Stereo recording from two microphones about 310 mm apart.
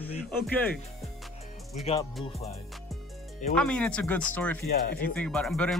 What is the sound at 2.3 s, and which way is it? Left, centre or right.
Music, centre.